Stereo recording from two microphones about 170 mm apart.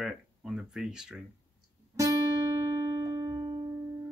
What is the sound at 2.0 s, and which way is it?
Music, 20° right (ahead or behind).